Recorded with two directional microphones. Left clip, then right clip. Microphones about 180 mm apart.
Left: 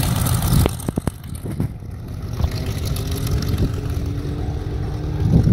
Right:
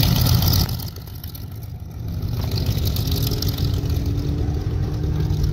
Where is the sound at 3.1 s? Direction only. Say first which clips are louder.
Right 2 dB; centre (ahead or behind).